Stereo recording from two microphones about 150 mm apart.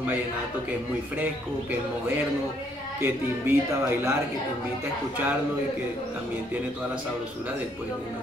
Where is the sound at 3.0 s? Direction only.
15° right (ahead or behind).